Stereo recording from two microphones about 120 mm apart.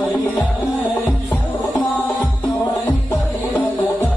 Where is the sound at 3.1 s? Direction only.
15° left (ahead or behind).